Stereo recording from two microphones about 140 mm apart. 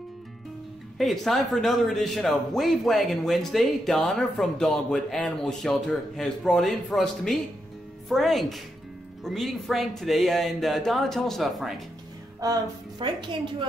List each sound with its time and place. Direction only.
0.9 s speech: centre (ahead or behind)
12.4 s music: 25° right (ahead or behind)
13.0 s a woman's voice: 35° right (ahead or behind)